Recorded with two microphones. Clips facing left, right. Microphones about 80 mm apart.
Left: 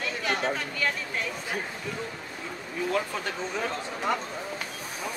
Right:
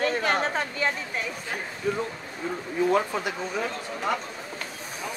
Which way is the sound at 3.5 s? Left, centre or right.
Centre.